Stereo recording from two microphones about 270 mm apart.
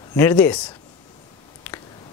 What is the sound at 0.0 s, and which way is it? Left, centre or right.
Speech, centre.